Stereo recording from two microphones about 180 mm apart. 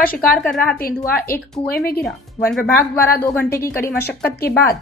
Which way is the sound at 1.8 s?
60° left (ahead or behind).